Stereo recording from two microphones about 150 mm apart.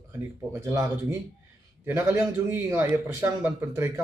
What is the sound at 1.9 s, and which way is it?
A man's voice, 20° right (ahead or behind).